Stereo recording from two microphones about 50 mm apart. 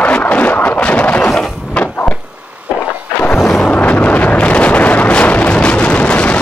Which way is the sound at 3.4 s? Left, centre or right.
Left.